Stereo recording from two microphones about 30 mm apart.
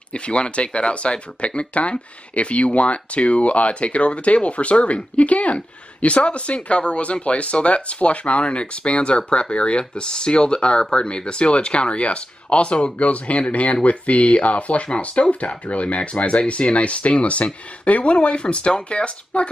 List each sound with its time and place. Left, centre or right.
0.1 s speech: left